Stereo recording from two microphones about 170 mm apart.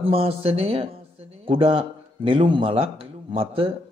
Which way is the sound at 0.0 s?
35° right (ahead or behind).